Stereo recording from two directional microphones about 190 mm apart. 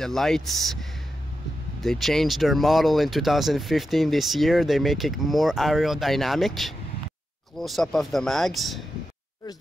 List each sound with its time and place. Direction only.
0.0 s speech: centre (ahead or behind)
1.8 s speech: centre (ahead or behind)